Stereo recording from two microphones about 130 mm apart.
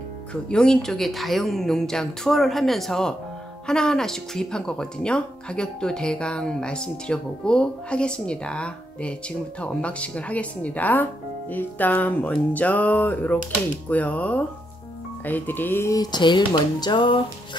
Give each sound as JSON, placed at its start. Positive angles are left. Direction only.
{"t": 0.3, "sound": "speech", "side_deg": 5}
{"t": 16.0, "sound": "speech", "side_deg": 35}